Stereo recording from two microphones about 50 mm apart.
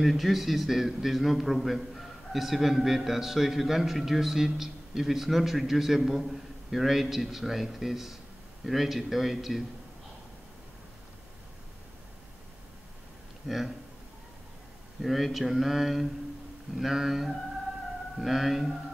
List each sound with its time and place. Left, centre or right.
0.0 s a man's voice: centre
13.5 s a man's voice: centre
15.0 s a man's voice: centre